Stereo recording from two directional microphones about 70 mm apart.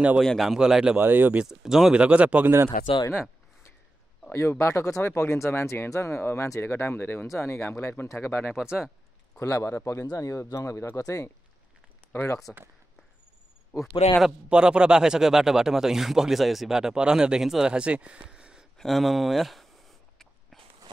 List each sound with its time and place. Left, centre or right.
0.2 s speech: centre
0.5 s speech: centre
0.9 s speech: right
1.4 s speech: centre
3.1 s a sound: left
4.3 s speech: left
8.5 s speech: centre
9.4 s speech: left
12.5 s speech: left
13.7 s speech: centre
14.5 s speech: centre
18.8 s a sound: centre